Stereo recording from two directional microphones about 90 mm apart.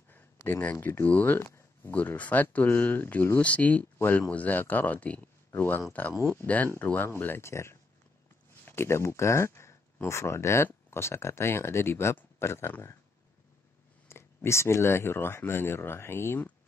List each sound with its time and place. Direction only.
0.1 s speech: 20° left (ahead or behind)
14.0 s speech: 30° left (ahead or behind)